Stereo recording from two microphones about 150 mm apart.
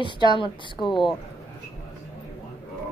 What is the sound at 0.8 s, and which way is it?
Speech, centre (ahead or behind).